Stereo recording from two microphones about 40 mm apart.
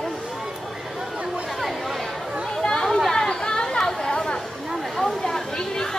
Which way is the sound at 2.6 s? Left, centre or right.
Centre.